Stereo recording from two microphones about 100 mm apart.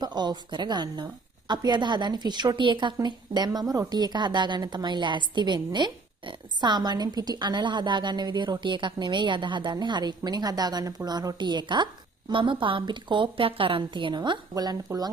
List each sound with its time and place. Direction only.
0.0 s a woman's voice: 45° right (ahead or behind)
14.5 s speech: 40° right (ahead or behind)